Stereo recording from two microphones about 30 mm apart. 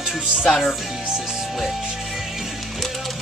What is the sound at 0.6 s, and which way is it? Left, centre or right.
Music, centre.